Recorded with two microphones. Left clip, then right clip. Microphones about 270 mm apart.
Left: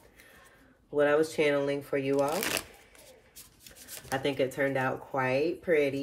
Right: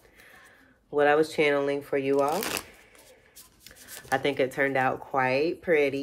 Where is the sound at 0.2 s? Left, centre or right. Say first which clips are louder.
Right 4 dB; centre.